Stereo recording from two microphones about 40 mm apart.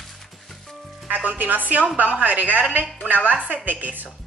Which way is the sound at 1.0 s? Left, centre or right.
Right.